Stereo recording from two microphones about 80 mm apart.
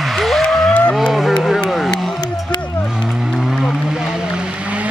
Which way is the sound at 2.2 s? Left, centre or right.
Left.